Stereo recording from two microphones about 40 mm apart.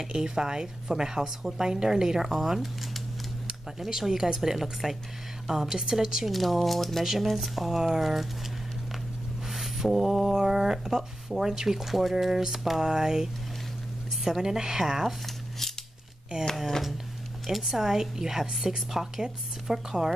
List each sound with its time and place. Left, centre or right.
0.0 s speech: centre
6.3 s speech: centre
9.5 s mantra: centre
10.3 s speech: centre
15.0 s a sound: centre
17.6 s speech: centre